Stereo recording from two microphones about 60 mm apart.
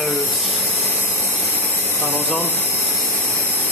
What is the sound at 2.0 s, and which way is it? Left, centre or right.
Speech, left.